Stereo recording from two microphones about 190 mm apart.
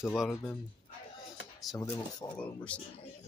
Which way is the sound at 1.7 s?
20° left (ahead or behind).